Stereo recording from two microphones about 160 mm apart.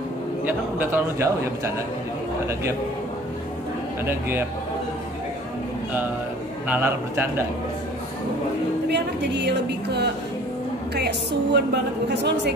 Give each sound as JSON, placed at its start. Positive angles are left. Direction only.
{"t": 0.5, "sound": "a man's voice", "side_deg": -10}
{"t": 4.0, "sound": "a man's voice", "side_deg": -15}
{"t": 6.7, "sound": "a man's voice", "side_deg": -15}
{"t": 8.8, "sound": "a woman's voice", "side_deg": -90}